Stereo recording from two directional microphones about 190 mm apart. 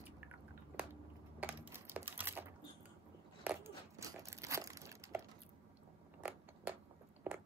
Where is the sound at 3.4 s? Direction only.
15° right (ahead or behind).